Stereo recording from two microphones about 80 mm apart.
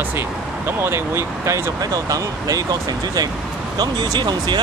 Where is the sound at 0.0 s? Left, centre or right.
Right.